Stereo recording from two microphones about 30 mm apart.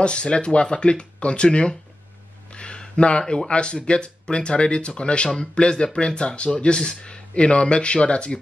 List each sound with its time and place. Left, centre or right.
0.0 s speech: left
2.5 s a sound: left
3.0 s speech: left